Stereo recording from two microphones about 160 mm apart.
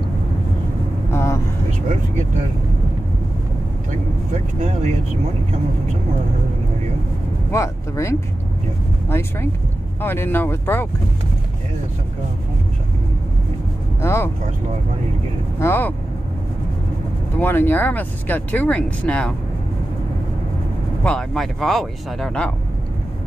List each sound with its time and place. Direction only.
1.1 s vehicle: 15° left (ahead or behind)
1.7 s speech: 50° right (ahead or behind)
7.5 s speech: 20° left (ahead or behind)
14.0 s speech: 15° left (ahead or behind)
15.6 s speech: 15° left (ahead or behind)
17.4 s speech: 10° left (ahead or behind)
21.0 s speech: 5° left (ahead or behind)